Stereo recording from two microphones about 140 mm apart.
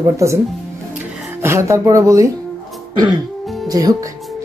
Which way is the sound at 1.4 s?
20° right (ahead or behind).